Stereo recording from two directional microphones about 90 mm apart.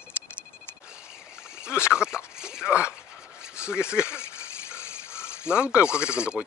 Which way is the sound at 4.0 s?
30° left (ahead or behind).